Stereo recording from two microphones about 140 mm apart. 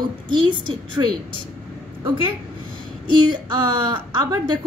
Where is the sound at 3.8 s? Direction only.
35° right (ahead or behind).